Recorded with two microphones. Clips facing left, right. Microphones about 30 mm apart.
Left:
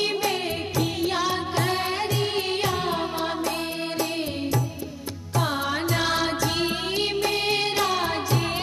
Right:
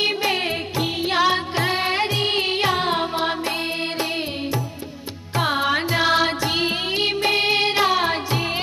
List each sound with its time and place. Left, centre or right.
0.0 s music: right
2.8 s music: right